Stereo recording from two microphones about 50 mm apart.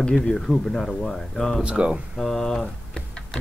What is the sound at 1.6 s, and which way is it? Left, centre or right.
Speech, right.